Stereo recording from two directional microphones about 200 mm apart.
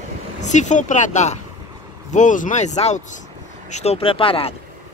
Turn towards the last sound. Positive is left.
turn(degrees=25)  # may be behind; listen again after turning